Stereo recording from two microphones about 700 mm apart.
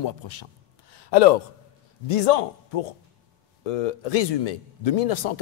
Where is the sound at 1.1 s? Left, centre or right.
Left.